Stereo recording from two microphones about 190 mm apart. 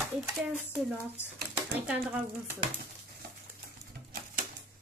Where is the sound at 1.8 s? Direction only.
5° right (ahead or behind).